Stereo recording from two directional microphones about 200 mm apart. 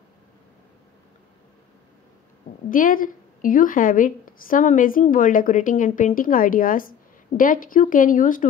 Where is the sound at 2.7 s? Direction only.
45° left (ahead or behind).